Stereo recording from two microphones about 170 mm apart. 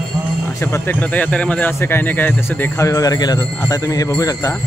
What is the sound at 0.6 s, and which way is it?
Speech, 15° left (ahead or behind).